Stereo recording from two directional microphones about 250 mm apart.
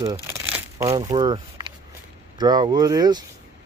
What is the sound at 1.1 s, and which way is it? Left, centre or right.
Speech, centre.